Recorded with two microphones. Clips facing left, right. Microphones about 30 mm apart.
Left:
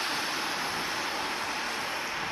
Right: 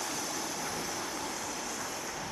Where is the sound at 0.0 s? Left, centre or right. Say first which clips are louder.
Left 5 dB; left.